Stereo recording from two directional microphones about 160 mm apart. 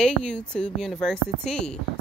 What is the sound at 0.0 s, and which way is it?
Speech, 5° left (ahead or behind).